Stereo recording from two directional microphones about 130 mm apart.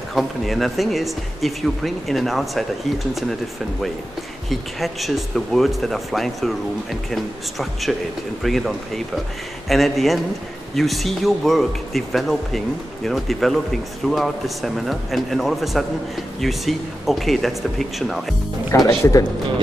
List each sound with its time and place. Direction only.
0.1 s speech: centre (ahead or behind)
4.5 s speech: centre (ahead or behind)
18.7 s speech: 25° left (ahead or behind)